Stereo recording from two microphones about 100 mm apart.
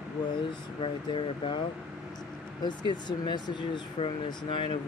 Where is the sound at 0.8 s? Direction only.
60° left (ahead or behind).